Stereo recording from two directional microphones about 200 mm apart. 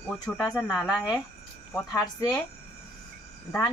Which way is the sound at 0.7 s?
5° right (ahead or behind).